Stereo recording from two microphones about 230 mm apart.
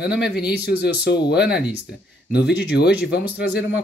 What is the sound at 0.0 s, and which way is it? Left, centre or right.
Speech, left.